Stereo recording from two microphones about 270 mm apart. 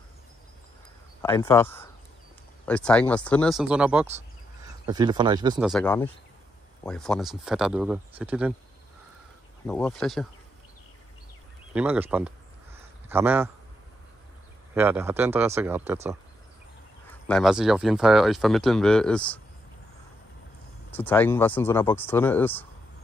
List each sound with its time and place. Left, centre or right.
1.2 s speech: centre
5.6 s speech: centre
9.7 s speech: centre
11.7 s a sound: centre
14.7 s speech: centre
17.3 s speech: centre
20.9 s speech: centre